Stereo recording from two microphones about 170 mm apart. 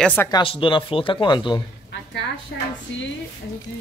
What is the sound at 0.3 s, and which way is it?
Speech, 30° left (ahead or behind).